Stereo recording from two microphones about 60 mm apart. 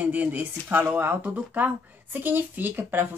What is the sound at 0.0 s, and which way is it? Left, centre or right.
Speech, right.